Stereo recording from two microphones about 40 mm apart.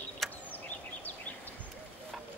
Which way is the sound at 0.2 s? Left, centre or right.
Centre.